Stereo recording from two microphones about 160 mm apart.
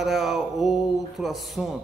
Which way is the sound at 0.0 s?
Centre (ahead or behind).